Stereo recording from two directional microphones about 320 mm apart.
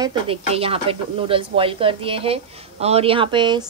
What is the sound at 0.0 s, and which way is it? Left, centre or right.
Speech, centre.